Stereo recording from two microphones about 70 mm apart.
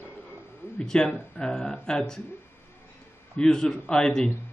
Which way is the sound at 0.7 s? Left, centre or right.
Centre.